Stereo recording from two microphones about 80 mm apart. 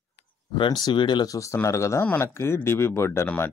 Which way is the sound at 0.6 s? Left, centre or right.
Left.